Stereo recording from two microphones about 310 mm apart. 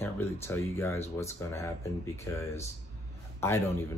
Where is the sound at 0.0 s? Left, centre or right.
Centre.